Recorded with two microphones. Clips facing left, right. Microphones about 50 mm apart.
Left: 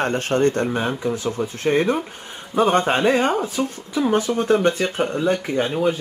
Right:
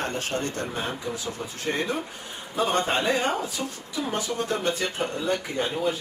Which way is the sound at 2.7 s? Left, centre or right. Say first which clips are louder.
Left 6 dB; left.